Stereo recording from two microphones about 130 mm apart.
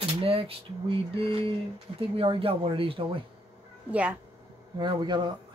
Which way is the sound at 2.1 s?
45° right (ahead or behind).